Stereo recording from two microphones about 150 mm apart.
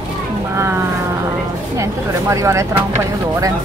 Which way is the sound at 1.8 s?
20° right (ahead or behind).